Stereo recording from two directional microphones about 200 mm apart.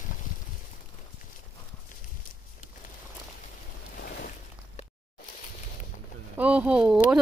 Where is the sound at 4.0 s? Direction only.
50° left (ahead or behind).